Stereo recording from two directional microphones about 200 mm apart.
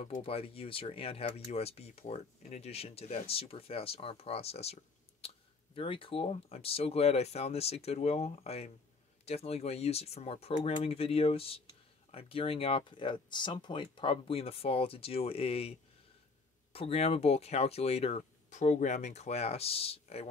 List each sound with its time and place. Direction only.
0.0 s speech: 30° left (ahead or behind)
5.8 s speech: 25° left (ahead or behind)
16.7 s speech: 30° left (ahead or behind)